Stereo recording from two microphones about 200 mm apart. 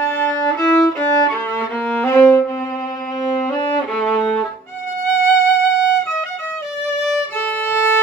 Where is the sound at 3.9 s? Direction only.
5° left (ahead or behind).